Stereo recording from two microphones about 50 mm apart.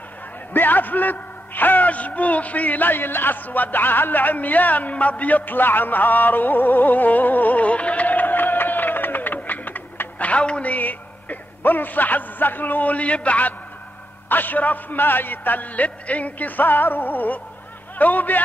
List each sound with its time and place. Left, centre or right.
0.5 s a man's voice: left